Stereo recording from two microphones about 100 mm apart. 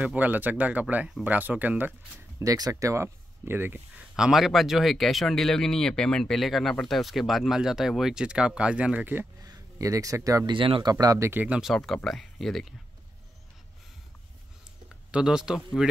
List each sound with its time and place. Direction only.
0.0 s speech: 15° right (ahead or behind)
2.3 s speech: 35° right (ahead or behind); by 3.8 s 20° right (ahead or behind)
4.2 s speech: 5° right (ahead or behind)
9.4 s speech: 35° right (ahead or behind)
10.4 s speech: 55° right (ahead or behind)
10.9 s speech: 40° right (ahead or behind)
11.2 s speech: 15° right (ahead or behind)
11.6 s speech: 5° left (ahead or behind)
15.0 s speech: 10° right (ahead or behind)